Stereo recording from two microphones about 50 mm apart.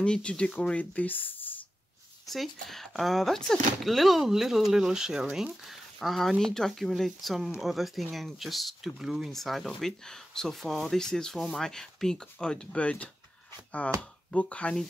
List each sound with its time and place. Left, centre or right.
0.0 s speech: centre; by 1.5 s left
2.2 s speech: centre
5.6 s speech: centre
9.3 s speech: centre
11.3 s speech: centre
11.6 s speech: centre
12.7 s speech: left